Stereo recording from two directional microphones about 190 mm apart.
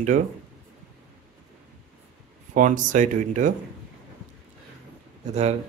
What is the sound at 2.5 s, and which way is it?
Speech, 45° right (ahead or behind).